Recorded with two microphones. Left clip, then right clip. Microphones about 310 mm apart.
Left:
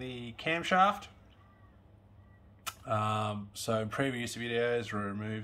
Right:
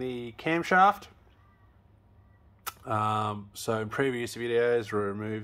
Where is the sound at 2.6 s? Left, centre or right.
Centre.